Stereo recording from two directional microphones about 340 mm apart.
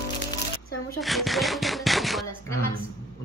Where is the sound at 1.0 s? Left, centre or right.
Centre.